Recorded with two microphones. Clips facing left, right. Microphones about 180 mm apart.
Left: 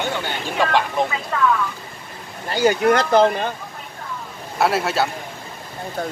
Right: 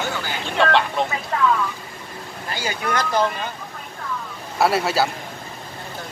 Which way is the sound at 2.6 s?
50° left (ahead or behind).